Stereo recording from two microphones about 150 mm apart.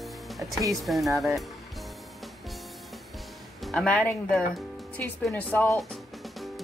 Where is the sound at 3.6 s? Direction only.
5° left (ahead or behind).